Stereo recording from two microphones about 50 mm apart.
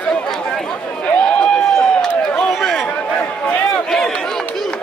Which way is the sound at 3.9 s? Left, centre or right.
Centre.